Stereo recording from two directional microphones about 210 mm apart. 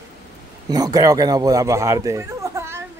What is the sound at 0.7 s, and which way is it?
Speech, 15° right (ahead or behind).